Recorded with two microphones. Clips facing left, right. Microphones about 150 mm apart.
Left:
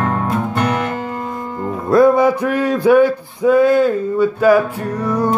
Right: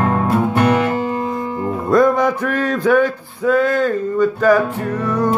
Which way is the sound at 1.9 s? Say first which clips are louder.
Left 3 dB; 5° left (ahead or behind).